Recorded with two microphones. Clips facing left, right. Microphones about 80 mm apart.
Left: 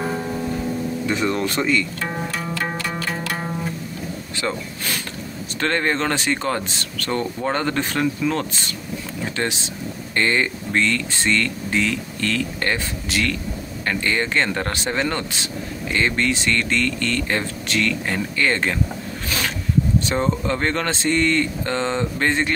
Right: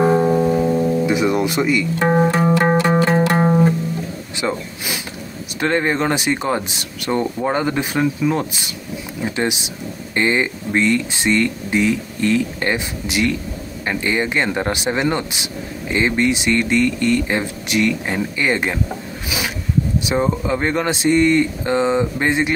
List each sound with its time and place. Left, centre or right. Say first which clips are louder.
0.0 s music: right 10 dB; right
1.0 s speech: right 5 dB; centre
2.0 s music: right 12 dB; right
4.4 s speech: right 4 dB; centre
20.1 s speech: right 3 dB; centre